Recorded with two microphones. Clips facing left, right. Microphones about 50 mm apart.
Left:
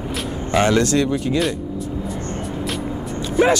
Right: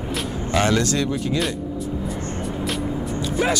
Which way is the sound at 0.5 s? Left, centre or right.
Centre.